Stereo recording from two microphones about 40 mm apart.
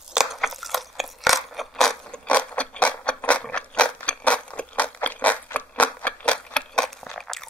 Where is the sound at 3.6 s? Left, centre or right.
Left.